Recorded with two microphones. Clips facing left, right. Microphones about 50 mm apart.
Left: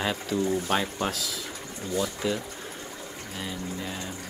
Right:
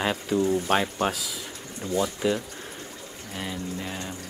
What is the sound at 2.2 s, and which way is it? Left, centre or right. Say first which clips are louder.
Speech: right 3 dB; centre.